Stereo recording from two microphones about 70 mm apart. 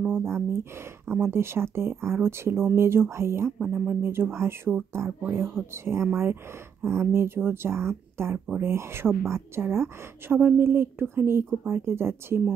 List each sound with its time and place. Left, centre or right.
0.0 s a woman's voice: right
3.7 s a woman's voice: right